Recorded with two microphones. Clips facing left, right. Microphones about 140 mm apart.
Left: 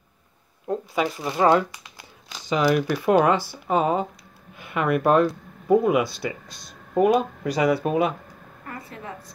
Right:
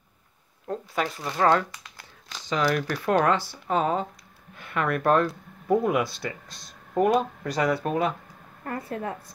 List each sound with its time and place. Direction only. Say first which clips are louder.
0.7 s speech: left 4 dB; 10° left (ahead or behind)
8.6 s a woman's voice: right 6 dB; 50° right (ahead or behind)